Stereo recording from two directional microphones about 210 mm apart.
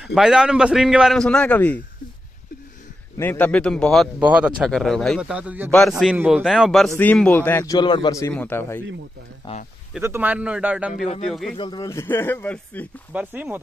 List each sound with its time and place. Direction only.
0.0 s speech: 5° right (ahead or behind)
3.2 s a man's voice: 10° left (ahead or behind)
9.9 s speech: 10° right (ahead or behind)
11.5 s a man's voice: 20° left (ahead or behind)
13.1 s speech: 5° right (ahead or behind)